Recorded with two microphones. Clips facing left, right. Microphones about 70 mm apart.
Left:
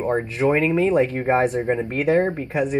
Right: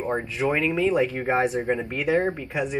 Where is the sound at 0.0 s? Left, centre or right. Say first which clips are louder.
Left 4 dB; centre.